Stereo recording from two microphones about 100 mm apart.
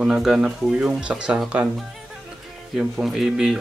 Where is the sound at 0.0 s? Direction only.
5° right (ahead or behind).